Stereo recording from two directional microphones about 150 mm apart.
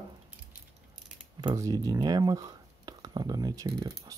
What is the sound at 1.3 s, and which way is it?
Speech, 25° right (ahead or behind).